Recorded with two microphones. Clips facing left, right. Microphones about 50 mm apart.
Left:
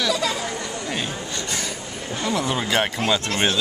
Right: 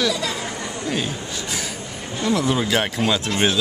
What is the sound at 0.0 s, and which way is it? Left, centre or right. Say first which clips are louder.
Chatter: even; centre.